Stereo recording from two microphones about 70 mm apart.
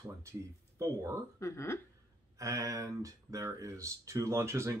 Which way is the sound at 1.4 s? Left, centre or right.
Left.